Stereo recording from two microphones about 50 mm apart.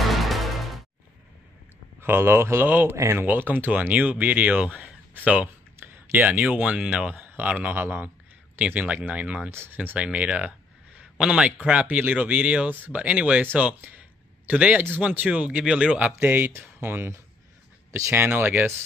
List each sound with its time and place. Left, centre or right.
0.0 s music: centre
2.0 s speech: right
2.7 s speech: right
5.8 s a sound: right
6.1 s speech: right
7.2 s a sound: right
7.7 s a man's voice: right
8.5 s speech: right
9.5 s speech: right
9.9 s speech: right
11.0 s a sound: centre
11.6 s speech: right
16.2 s speech: right
18.1 s speech: right